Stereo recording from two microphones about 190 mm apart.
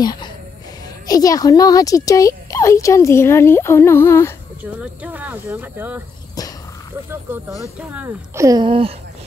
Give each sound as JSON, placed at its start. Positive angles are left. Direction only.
{"t": 0.0, "sound": "speech", "side_deg": 20}
{"t": 5.0, "sound": "speech", "side_deg": -10}
{"t": 7.1, "sound": "speech", "side_deg": -10}